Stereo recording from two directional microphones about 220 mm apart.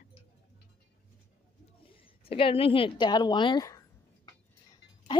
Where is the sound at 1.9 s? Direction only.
25° left (ahead or behind).